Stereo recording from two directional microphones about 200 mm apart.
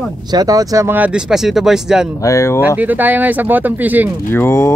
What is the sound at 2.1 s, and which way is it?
Speech, 15° left (ahead or behind).